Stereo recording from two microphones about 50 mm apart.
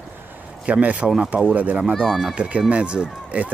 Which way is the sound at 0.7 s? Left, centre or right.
Right.